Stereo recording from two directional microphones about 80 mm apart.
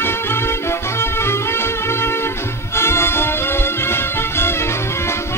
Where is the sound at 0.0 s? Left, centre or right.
Left.